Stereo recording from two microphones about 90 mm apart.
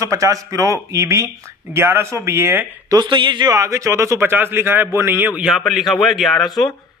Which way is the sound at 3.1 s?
60° right (ahead or behind).